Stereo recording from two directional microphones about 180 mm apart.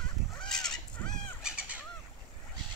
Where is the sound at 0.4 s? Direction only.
5° left (ahead or behind).